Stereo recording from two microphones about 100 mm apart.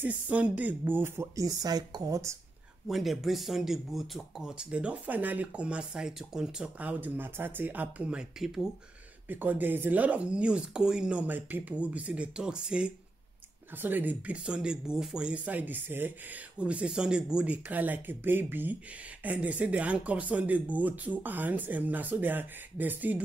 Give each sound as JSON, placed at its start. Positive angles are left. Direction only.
{"t": 0.0, "sound": "speech", "side_deg": -15}
{"t": 2.9, "sound": "speech", "side_deg": 0}
{"t": 9.3, "sound": "speech", "side_deg": -20}